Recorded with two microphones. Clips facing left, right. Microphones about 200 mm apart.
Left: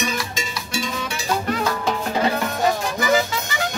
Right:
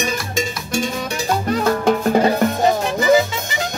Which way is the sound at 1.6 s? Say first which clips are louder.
Right 7 dB; 50° right (ahead or behind).